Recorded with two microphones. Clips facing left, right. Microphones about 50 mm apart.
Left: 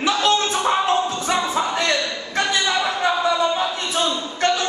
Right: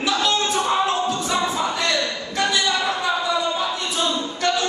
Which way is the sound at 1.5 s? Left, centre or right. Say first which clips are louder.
Left 2 dB; left.